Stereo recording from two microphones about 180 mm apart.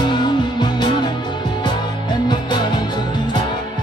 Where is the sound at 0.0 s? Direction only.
25° left (ahead or behind).